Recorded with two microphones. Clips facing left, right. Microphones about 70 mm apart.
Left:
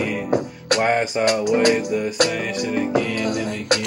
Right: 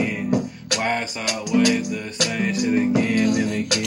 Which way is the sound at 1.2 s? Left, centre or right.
Left.